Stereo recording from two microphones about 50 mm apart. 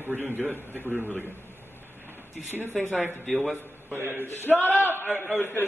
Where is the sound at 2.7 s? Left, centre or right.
Centre.